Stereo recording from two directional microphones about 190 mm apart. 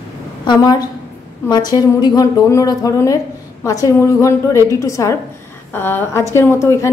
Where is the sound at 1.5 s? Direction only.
20° left (ahead or behind).